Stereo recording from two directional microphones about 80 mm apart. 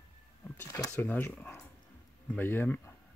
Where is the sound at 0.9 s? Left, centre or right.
Left.